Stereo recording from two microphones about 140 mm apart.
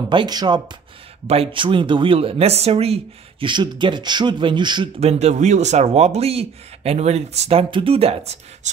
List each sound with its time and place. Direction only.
0.1 s speech: 30° right (ahead or behind)
1.2 s speech: 45° right (ahead or behind)
5.0 s speech: 55° right (ahead or behind)